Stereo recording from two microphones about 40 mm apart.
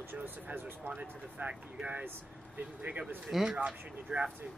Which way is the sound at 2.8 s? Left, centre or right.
Right.